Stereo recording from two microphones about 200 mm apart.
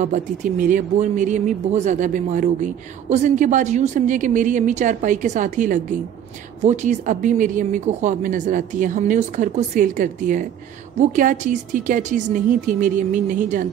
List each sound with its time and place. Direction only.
0.0 s speech: 40° right (ahead or behind)